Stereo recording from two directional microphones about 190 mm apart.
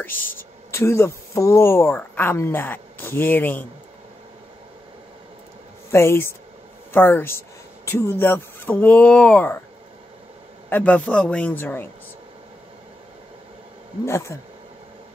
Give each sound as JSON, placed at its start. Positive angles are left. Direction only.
{"t": 0.1, "sound": "speech", "side_deg": 45}
{"t": 0.4, "sound": "speech", "side_deg": 15}
{"t": 5.9, "sound": "a man's voice", "side_deg": 15}
{"t": 10.7, "sound": "a man's voice", "side_deg": 10}
{"t": 14.0, "sound": "a man's voice", "side_deg": 15}